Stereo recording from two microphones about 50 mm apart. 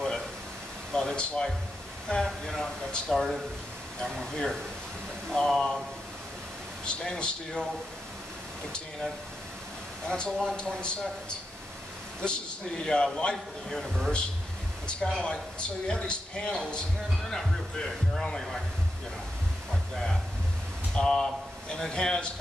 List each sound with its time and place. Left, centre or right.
0.9 s a man's voice: centre
6.8 s a man's voice: centre
10.0 s a man's voice: centre
12.2 s a man's voice: centre
17.3 s a man's voice: centre
20.9 s speech: centre